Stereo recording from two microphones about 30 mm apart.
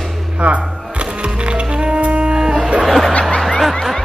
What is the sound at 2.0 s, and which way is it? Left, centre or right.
Music, right.